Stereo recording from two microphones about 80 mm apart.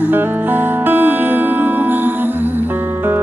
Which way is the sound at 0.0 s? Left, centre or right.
Right.